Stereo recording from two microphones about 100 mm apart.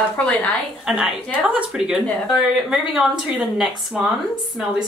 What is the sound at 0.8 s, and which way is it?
Speech, 5° right (ahead or behind).